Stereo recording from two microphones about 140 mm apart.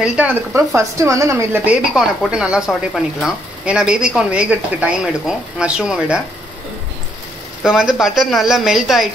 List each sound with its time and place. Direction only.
0.0 s speech: 10° right (ahead or behind)
2.0 s speech: 5° right (ahead or behind)
7.6 s speech: 5° right (ahead or behind)